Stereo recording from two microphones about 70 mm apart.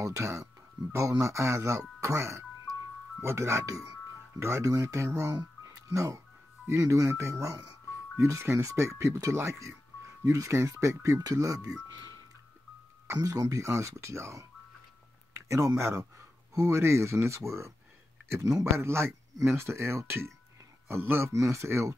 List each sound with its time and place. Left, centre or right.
0.0 s speech: right
13.2 s speech: right
18.8 s speech: right
21.3 s speech: right